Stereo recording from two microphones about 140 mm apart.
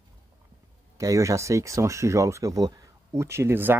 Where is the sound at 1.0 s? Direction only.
25° right (ahead or behind).